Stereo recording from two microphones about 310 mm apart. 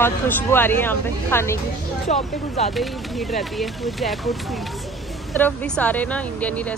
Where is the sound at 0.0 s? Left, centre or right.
Centre.